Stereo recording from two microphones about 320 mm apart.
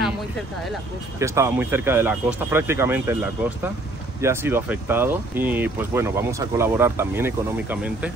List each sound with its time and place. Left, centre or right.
1.2 s speech: centre